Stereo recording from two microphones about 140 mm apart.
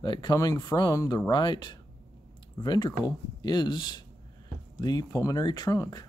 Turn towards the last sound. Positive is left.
turn(degrees=25)  # may be behind; listen again after turning